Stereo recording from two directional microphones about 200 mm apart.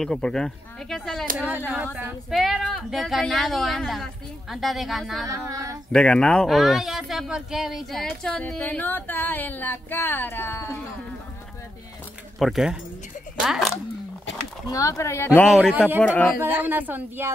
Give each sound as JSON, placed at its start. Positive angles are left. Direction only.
{"t": 0.0, "sound": "speech", "side_deg": 5}
{"t": 5.2, "sound": "a woman's voice", "side_deg": -15}
{"t": 5.9, "sound": "speech", "side_deg": 5}
{"t": 12.4, "sound": "speech", "side_deg": 0}
{"t": 14.7, "sound": "speech", "side_deg": 15}
{"t": 16.4, "sound": "a woman's voice", "side_deg": -10}